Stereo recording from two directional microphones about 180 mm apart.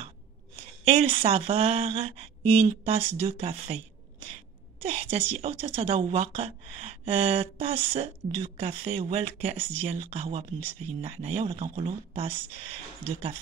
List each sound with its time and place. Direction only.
0.8 s a woman's voice: 30° right (ahead or behind)
13.0 s speech: 15° left (ahead or behind)